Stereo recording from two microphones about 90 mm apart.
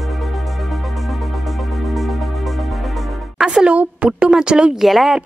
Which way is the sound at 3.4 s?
10° right (ahead or behind).